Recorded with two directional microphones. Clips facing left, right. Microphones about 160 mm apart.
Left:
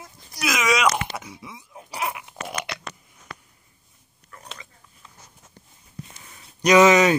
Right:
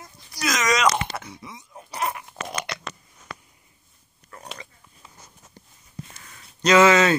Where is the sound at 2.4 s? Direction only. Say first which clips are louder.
Even; 5° left (ahead or behind).